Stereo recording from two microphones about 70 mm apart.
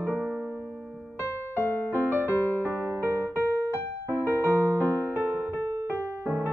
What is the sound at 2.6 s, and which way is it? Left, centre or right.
Music, right.